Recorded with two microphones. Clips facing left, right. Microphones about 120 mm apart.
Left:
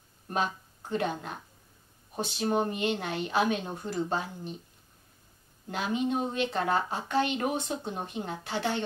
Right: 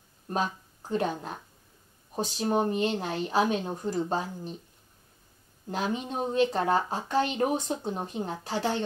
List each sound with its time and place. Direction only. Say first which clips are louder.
0.3 s speech: right 1 dB; 35° right (ahead or behind)
5.7 s speech: left 1 dB; 40° right (ahead or behind)